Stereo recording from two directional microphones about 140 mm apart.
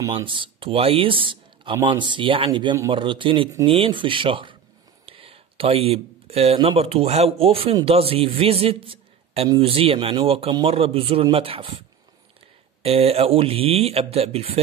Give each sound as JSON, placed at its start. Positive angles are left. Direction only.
{"t": 0.1, "sound": "a man's voice", "side_deg": -35}
{"t": 12.8, "sound": "speech", "side_deg": -45}